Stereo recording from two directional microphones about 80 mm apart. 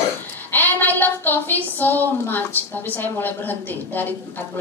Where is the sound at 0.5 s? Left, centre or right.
Left.